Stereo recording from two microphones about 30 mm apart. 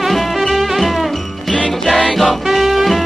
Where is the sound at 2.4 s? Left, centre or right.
Centre.